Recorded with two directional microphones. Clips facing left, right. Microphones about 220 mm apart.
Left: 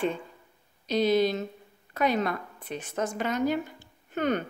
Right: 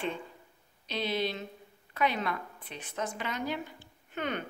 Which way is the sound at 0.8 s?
45° left (ahead or behind).